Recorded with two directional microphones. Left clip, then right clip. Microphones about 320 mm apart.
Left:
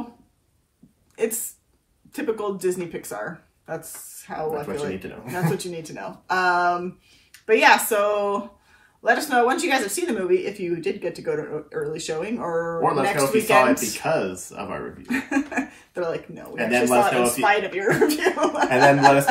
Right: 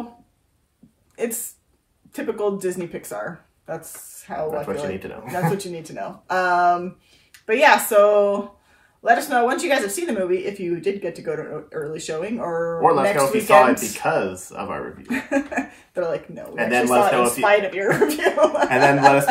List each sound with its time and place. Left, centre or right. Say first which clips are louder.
1.1 s speech: left 1 dB; centre